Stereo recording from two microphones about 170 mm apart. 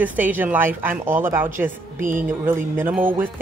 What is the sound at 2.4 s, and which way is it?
Speech, 10° right (ahead or behind).